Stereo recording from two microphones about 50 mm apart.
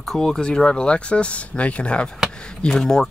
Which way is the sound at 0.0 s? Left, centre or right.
Centre.